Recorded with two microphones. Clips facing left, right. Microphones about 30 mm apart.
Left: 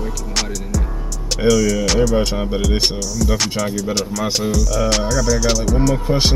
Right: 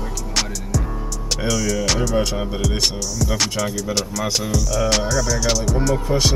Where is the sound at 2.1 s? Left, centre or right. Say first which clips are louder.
Left 3 dB; centre.